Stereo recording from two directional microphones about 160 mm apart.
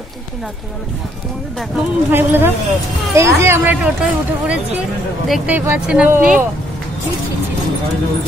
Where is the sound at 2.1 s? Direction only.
10° right (ahead or behind).